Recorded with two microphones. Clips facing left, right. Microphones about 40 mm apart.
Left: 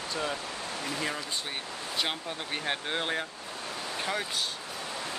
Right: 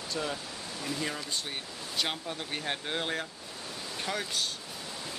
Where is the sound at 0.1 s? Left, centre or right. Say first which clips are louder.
Left 1 dB; centre.